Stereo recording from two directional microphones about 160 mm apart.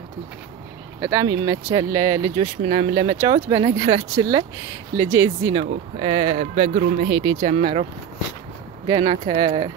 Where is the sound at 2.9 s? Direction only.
30° right (ahead or behind).